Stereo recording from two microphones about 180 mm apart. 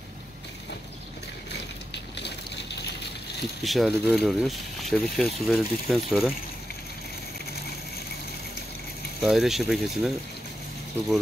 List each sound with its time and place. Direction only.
2.1 s a sound: 70° left (ahead or behind)
3.6 s speech: centre (ahead or behind)
9.2 s speech: centre (ahead or behind)